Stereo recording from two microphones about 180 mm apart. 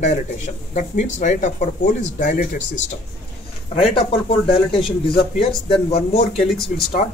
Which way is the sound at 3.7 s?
30° left (ahead or behind).